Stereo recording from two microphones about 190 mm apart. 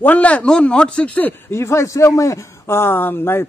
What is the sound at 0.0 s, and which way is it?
Speech, 10° left (ahead or behind).